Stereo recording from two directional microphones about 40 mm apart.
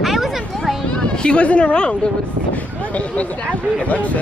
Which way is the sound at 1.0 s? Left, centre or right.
Left.